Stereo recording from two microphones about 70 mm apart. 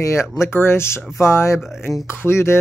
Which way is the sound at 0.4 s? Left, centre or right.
Left.